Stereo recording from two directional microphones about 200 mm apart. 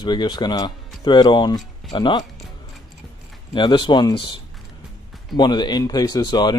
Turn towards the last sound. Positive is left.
turn(degrees=20)  # may be behind; listen again after turning